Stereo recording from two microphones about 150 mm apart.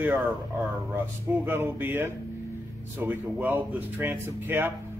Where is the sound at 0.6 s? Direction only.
15° right (ahead or behind).